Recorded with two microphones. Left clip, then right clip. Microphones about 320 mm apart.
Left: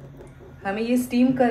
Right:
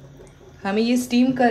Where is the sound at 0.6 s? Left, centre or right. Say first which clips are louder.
Right 3 dB; right.